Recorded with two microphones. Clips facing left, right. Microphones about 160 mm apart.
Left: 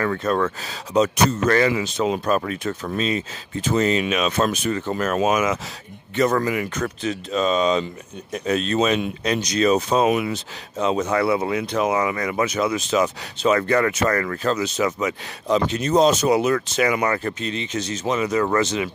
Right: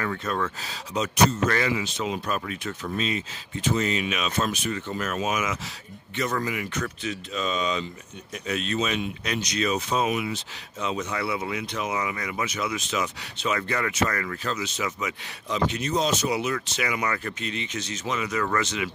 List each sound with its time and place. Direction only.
0.0 s speech: 45° left (ahead or behind)
0.9 s speech: 40° left (ahead or behind)
10.0 s speech: 55° left (ahead or behind)
10.3 s speech: 35° left (ahead or behind)
11.1 s speech: 50° left (ahead or behind)
17.1 s speech: 30° left (ahead or behind)